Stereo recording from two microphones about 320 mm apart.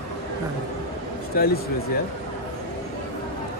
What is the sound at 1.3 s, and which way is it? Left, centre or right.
Speech, left.